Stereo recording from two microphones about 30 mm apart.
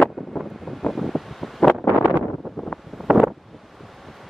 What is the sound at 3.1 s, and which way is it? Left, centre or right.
Wind noise, right.